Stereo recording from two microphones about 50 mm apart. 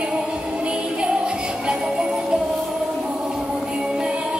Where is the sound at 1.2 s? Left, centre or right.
Centre.